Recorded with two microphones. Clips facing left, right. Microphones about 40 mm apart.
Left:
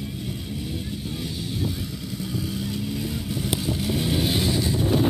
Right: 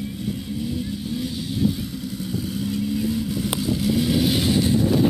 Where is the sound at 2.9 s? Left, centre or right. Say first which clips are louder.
Right 5 dB; left.